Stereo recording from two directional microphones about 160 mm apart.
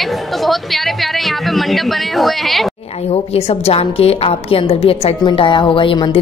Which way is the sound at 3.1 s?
40° left (ahead or behind).